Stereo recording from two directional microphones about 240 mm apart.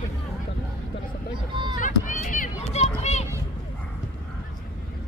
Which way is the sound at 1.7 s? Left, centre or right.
Left.